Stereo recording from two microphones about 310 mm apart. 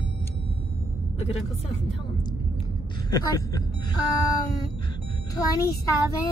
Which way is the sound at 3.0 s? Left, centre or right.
Centre.